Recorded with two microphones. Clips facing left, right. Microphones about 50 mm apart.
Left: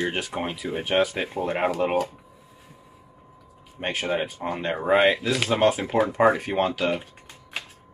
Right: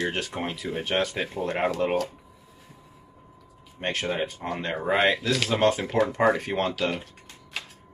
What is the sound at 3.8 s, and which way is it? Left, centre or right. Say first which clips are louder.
Speech: left 2 dB; centre.